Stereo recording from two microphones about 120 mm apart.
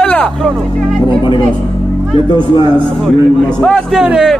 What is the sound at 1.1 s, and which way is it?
Speech, 40° left (ahead or behind).